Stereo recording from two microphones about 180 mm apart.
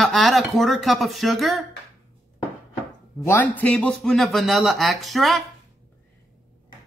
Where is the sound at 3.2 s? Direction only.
10° left (ahead or behind).